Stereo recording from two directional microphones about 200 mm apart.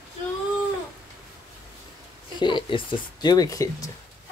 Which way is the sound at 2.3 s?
25° left (ahead or behind).